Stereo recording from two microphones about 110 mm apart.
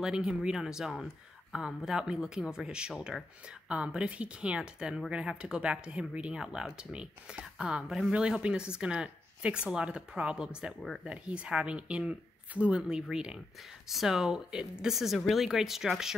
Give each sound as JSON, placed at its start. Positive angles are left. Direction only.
{"t": 0.0, "sound": "speech", "side_deg": -5}